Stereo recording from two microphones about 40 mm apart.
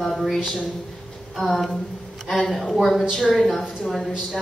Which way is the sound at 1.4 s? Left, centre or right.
Centre.